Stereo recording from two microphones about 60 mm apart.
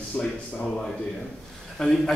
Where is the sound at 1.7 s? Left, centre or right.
Centre.